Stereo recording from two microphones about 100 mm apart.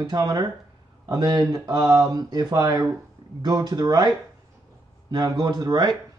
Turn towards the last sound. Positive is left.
turn(degrees=-45)  # may be behind; listen again after turning